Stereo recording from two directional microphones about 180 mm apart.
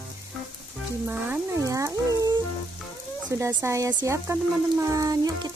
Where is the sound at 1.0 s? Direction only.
10° right (ahead or behind).